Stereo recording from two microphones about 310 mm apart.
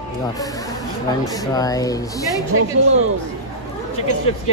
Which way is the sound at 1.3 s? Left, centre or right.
Centre.